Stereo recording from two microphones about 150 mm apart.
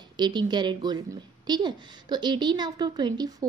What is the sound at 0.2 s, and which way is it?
A woman's voice, 30° right (ahead or behind).